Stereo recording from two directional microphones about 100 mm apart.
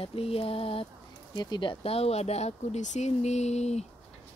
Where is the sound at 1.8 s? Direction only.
85° left.